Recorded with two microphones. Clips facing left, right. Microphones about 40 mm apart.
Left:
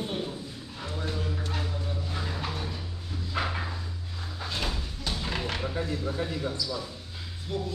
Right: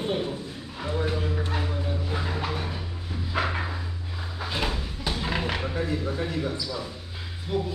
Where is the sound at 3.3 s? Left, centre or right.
Centre.